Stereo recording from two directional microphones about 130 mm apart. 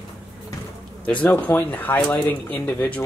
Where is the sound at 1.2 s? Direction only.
15° left (ahead or behind).